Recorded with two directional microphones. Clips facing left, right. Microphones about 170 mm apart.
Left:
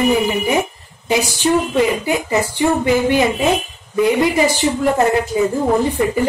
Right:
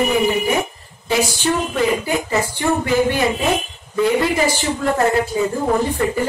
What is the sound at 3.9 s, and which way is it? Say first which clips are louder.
A woman's voice: left 2 dB; 15° left (ahead or behind).